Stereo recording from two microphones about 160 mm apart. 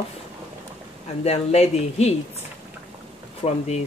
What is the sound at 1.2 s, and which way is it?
Speech, 40° left (ahead or behind).